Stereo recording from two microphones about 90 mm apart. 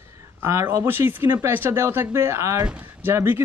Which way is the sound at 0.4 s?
30° right (ahead or behind).